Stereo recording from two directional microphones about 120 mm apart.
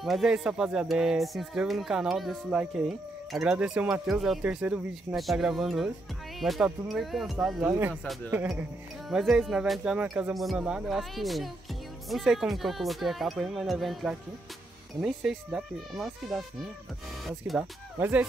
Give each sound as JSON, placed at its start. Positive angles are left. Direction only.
{"t": 0.0, "sound": "speech", "side_deg": 0}
{"t": 9.1, "sound": "speech", "side_deg": -5}
{"t": 10.3, "sound": "speech", "side_deg": 0}
{"t": 17.9, "sound": "speech", "side_deg": -20}